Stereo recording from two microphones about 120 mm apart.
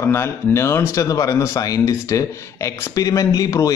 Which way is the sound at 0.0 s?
20° left (ahead or behind).